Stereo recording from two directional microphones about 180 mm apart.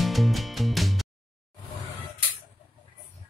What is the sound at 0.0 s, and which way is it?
Music, centre (ahead or behind).